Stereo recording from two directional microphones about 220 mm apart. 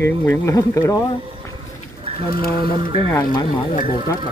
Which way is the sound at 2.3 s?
40° left (ahead or behind).